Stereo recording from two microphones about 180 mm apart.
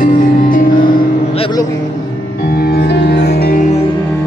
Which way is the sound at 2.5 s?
60° left (ahead or behind).